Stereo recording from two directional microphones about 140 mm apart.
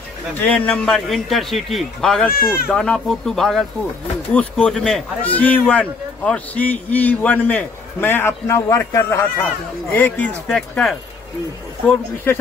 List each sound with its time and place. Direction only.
0.4 s a man's voice: 10° left (ahead or behind)
2.3 s speech: 90° left
2.7 s a man's voice: 5° left (ahead or behind)